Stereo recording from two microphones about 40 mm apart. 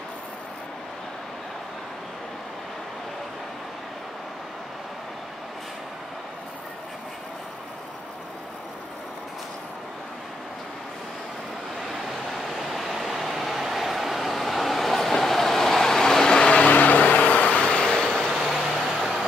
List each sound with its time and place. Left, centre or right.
12.3 s vehicle: centre; by 16.6 s left
16.6 s vehicle: left
17.9 s vehicle: centre
18.3 s vehicle: centre